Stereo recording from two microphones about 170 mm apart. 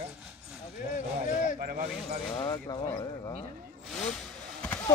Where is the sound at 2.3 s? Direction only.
25° left (ahead or behind).